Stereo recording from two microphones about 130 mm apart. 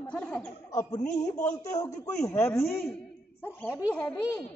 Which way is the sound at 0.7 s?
30° left (ahead or behind).